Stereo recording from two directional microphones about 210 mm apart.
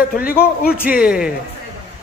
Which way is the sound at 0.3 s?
45° left (ahead or behind).